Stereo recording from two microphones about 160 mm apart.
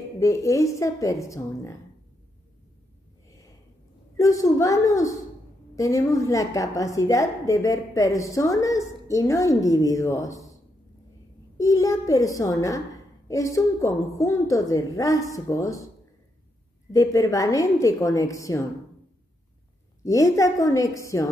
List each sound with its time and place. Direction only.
0.2 s a woman's voice: 20° left (ahead or behind)
3.3 s a sound: 20° left (ahead or behind)
4.2 s a woman's voice: 20° left (ahead or behind)
11.5 s a woman's voice: 20° left (ahead or behind)
16.9 s a woman's voice: 20° left (ahead or behind)
20.1 s a woman's voice: 20° left (ahead or behind)